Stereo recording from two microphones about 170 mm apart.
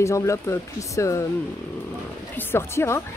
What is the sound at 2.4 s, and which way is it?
Speech, 15° left (ahead or behind).